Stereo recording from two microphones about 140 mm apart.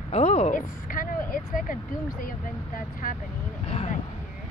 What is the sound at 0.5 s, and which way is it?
Vehicle, 80° left.